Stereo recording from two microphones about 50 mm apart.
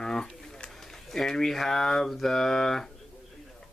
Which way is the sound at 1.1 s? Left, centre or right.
Centre.